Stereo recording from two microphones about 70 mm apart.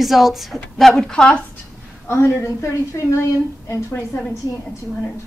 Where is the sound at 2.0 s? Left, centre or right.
Left.